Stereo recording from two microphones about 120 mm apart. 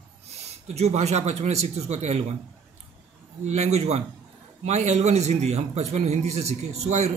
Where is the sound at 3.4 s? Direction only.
65° right (ahead or behind).